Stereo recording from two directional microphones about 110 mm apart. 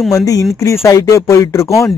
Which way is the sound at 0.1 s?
30° left (ahead or behind).